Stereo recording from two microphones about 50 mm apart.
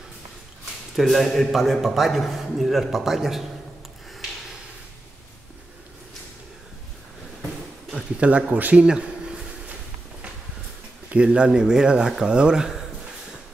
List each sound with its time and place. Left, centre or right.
0.9 s speech: centre
8.2 s speech: right
8.7 s a sound: right
11.1 s speech: right